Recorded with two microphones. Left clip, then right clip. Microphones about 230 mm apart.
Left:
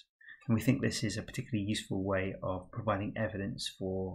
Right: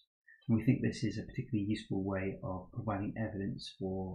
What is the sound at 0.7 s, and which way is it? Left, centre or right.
Speech, centre.